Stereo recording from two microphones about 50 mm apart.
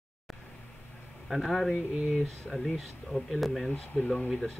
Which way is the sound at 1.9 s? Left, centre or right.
Centre.